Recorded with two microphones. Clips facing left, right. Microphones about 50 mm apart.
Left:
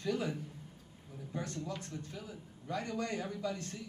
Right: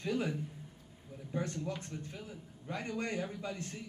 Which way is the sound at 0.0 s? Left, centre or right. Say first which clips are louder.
Even; right.